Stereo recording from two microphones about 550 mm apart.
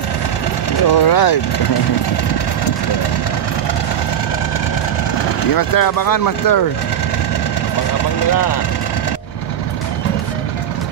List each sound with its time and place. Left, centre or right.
0.8 s speech: left
5.5 s speech: left